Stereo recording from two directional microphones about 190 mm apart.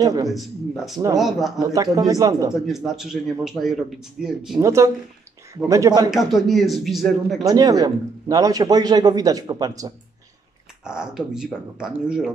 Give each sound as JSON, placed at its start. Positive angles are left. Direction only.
{"t": 0.0, "sound": "a man's voice", "side_deg": -20}
{"t": 0.3, "sound": "a man's voice", "side_deg": 0}
{"t": 1.6, "sound": "a man's voice", "side_deg": -20}
{"t": 2.5, "sound": "a man's voice", "side_deg": 0}
{"t": 4.6, "sound": "a man's voice", "side_deg": -15}
{"t": 6.0, "sound": "a man's voice", "side_deg": 0}
{"t": 7.4, "sound": "a man's voice", "side_deg": -20}
{"t": 10.8, "sound": "a man's voice", "side_deg": -5}